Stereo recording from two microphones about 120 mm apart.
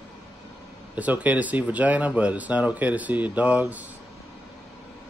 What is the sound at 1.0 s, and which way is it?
Speech, 10° right (ahead or behind).